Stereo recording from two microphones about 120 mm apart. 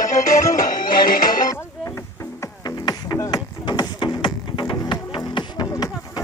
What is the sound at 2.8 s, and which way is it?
Music, 30° left (ahead or behind).